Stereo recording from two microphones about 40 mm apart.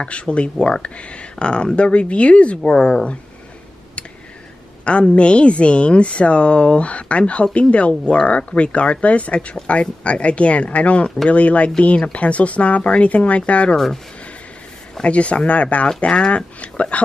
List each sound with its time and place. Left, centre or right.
0.0 s speech: left
2.6 s speech: left
4.8 s speech: left
15.0 s speech: left